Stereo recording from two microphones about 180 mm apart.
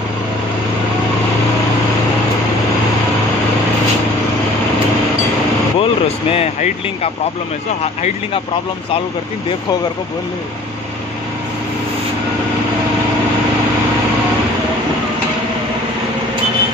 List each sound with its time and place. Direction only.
5.8 s speech: 35° left (ahead or behind)